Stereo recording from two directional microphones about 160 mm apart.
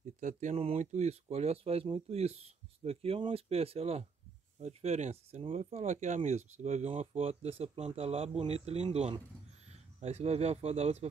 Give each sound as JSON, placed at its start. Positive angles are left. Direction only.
{"t": 0.2, "sound": "speech", "side_deg": -50}